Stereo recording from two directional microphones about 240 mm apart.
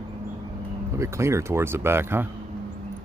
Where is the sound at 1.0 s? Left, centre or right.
Centre.